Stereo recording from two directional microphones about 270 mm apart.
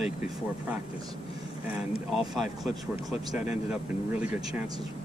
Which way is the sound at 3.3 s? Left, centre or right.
Left.